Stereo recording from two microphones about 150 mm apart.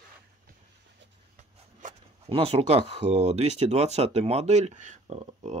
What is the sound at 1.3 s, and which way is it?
Speech, 45° right (ahead or behind).